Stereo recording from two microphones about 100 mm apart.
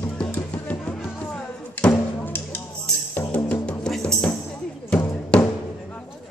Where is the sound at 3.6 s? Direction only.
10° left (ahead or behind).